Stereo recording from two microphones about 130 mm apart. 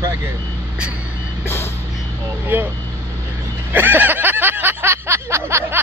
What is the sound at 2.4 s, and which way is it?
Speech, 15° right (ahead or behind).